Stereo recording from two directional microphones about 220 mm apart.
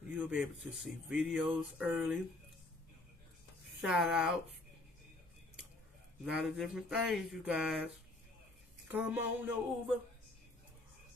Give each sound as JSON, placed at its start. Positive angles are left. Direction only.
{"t": 0.1, "sound": "speech", "side_deg": -5}
{"t": 3.8, "sound": "speech", "side_deg": -5}
{"t": 6.2, "sound": "speech", "side_deg": 0}
{"t": 8.9, "sound": "a sound", "side_deg": -5}